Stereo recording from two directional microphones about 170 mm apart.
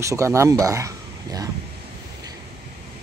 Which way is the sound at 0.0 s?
15° right (ahead or behind).